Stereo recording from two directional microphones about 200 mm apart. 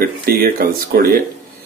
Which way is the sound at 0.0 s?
50° right (ahead or behind).